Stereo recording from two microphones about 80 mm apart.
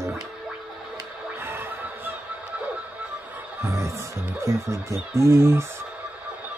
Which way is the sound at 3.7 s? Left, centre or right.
Right.